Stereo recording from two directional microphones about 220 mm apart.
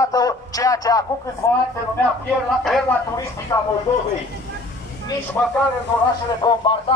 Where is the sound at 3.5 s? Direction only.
15° left (ahead or behind).